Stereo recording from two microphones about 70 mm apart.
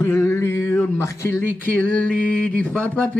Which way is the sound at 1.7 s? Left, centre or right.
Left.